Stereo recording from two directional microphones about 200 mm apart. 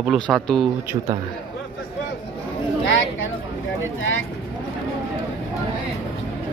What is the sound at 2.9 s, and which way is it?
Speech, 75° left (ahead or behind).